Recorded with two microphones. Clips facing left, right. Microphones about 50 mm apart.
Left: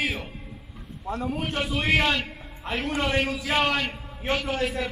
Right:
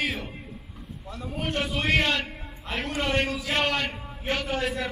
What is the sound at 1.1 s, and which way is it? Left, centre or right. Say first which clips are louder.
Speech: left 9 dB; left.